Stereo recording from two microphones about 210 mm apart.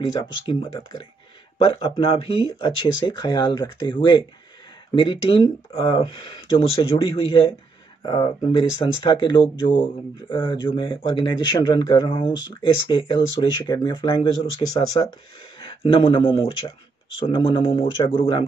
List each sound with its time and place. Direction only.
0.5 s speech: 20° left (ahead or behind)